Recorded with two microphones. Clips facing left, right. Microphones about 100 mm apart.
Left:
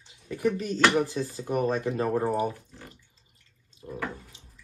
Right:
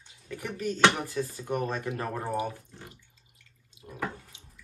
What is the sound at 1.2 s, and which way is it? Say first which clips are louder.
Speech: left 1 dB; 10° left (ahead or behind).